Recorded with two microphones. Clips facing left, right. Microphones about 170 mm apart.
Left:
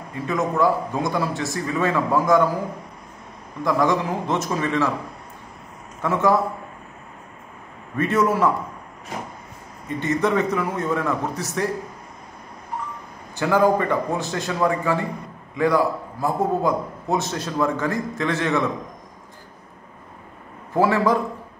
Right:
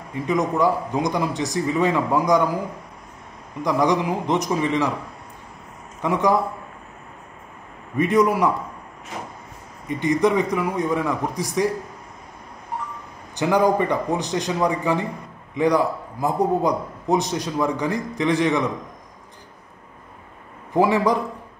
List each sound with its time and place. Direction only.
0.1 s a man's voice: 15° right (ahead or behind)
3.6 s a man's voice: 15° right (ahead or behind)
6.0 s a man's voice: 15° right (ahead or behind)
8.0 s a man's voice: 15° right (ahead or behind)
9.8 s a man's voice: 15° right (ahead or behind)
13.4 s a man's voice: 20° right (ahead or behind)
20.7 s a man's voice: 15° right (ahead or behind)